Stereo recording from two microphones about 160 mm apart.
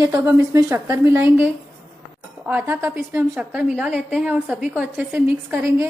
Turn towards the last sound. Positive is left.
turn(degrees=-10)  # may be behind; listen again after turning